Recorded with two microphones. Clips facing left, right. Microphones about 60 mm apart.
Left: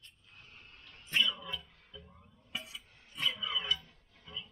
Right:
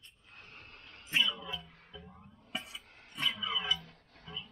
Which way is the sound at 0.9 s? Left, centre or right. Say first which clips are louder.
Even; centre.